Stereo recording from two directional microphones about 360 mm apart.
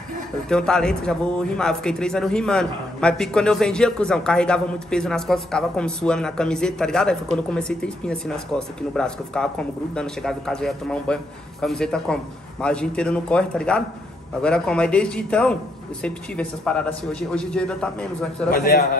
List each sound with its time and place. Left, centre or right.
0.5 s speech: centre
18.5 s a man's voice: left